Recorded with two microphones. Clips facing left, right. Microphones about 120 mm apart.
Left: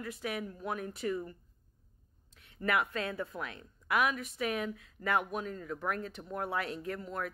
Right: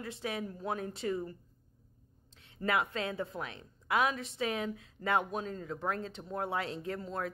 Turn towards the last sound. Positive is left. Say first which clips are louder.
# right 1 dB
turn(degrees=-30)  # may be behind; listen again after turning